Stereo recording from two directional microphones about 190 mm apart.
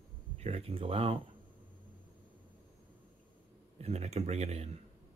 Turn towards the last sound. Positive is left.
turn(degrees=-35)  # may be behind; listen again after turning